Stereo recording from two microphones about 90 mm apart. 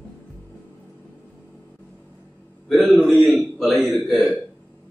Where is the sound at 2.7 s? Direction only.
Centre (ahead or behind).